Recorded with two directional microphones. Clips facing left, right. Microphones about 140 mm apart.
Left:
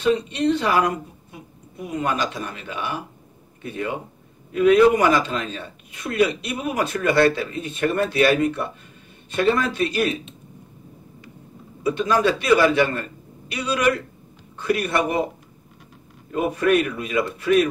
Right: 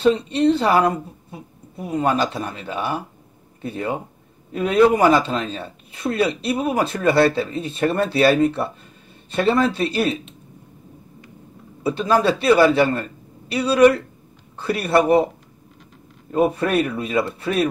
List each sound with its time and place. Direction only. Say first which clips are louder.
0.0 s speech: right 3 dB; 30° right (ahead or behind)
11.8 s speech: right 1 dB; 30° right (ahead or behind)
16.3 s speech: right 1 dB; 30° right (ahead or behind)